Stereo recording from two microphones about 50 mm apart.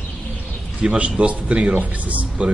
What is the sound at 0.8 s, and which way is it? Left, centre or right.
Speech, right.